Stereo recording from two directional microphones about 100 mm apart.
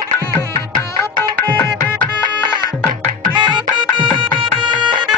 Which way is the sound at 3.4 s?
50° right (ahead or behind).